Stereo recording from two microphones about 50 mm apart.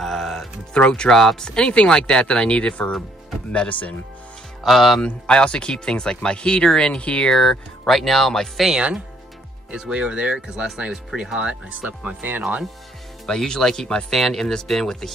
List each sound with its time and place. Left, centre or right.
0.0 s music: centre
0.7 s speech: centre
4.6 s speech: centre
5.0 s speech: left
7.3 s speech: centre
9.7 s speech: centre
12.2 s speech: right
13.3 s speech: centre
14.1 s speech: centre